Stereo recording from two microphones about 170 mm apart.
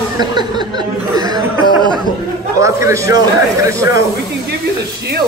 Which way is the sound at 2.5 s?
15° right (ahead or behind).